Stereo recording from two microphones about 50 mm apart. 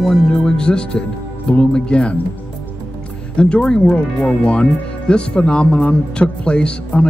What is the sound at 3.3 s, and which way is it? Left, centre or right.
Speech, left.